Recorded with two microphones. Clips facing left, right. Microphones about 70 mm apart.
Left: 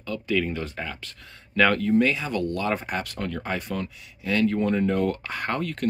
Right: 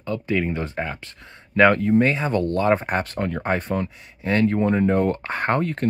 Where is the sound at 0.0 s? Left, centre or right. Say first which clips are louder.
Right 2 dB; right.